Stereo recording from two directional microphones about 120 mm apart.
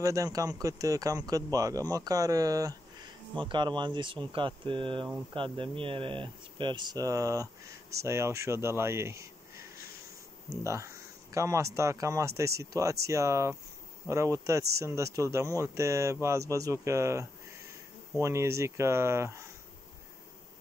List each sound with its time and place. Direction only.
0.0 s a man's voice: 30° right (ahead or behind)